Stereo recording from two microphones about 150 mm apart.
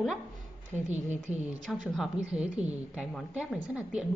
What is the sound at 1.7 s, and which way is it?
A woman's voice, centre (ahead or behind).